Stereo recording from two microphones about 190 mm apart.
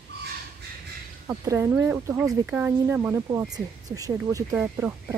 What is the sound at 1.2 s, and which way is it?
Speech, 15° right (ahead or behind).